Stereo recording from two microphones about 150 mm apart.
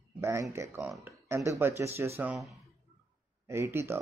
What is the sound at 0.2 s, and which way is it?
A man's voice, 20° right (ahead or behind).